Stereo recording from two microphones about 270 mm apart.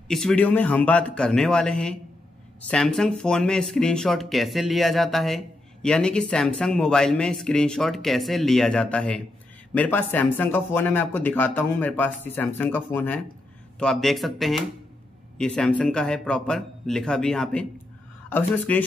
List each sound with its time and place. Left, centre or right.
0.1 s speech: centre